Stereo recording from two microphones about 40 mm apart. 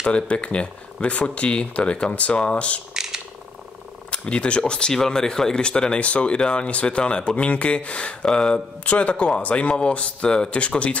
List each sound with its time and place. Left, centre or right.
0.0 s speech: left
2.9 s a sound: centre
4.1 s speech: left